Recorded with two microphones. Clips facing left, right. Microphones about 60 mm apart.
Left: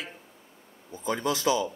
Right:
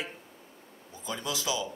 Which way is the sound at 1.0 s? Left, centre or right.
Left.